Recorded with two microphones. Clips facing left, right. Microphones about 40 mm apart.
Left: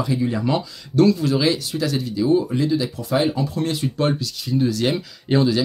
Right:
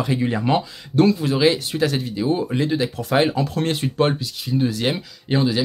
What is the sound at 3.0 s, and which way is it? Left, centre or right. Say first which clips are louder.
Speech: right 4 dB; right.